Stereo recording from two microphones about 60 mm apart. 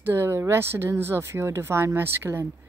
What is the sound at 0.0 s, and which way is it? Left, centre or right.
Speech, right.